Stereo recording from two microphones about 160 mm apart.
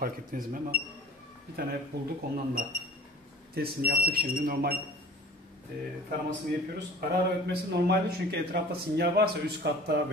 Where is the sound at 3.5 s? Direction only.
70° right (ahead or behind).